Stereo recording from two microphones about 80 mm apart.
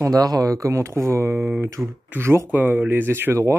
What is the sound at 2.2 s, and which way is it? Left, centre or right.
Speech, right.